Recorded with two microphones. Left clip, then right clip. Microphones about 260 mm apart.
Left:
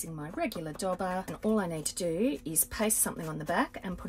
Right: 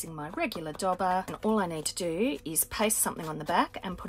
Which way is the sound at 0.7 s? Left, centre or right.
Right.